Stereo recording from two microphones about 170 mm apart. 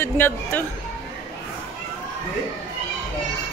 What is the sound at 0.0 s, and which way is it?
Speech, 10° left (ahead or behind).